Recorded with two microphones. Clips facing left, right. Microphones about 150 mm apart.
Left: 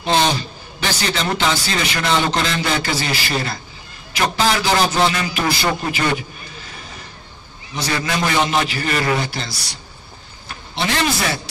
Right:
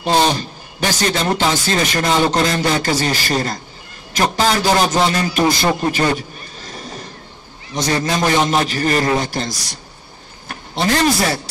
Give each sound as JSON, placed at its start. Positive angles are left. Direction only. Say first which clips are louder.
{"t": 0.0, "sound": "a man's voice", "louder": "right 2 dB", "side_deg": -10}
{"t": 0.4, "sound": "a man's voice", "louder": "right 4 dB", "side_deg": -45}